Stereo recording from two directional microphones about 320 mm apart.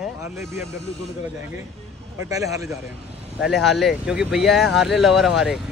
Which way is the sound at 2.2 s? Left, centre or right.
Centre.